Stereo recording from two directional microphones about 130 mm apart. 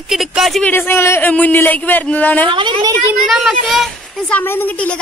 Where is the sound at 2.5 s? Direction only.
40° right (ahead or behind).